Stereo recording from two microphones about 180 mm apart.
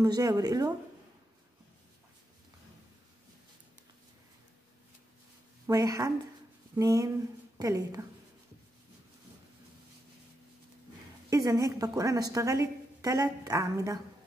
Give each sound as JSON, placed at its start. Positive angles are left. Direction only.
{"t": 0.0, "sound": "a woman's voice", "side_deg": -20}
{"t": 5.7, "sound": "a woman's voice", "side_deg": -20}
{"t": 11.2, "sound": "a woman's voice", "side_deg": -20}